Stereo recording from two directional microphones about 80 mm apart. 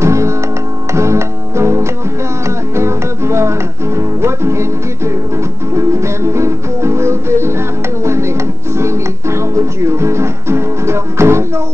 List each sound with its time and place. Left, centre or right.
0.0 s music: right